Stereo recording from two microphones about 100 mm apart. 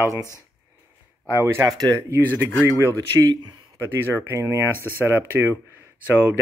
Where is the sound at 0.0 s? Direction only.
35° right (ahead or behind).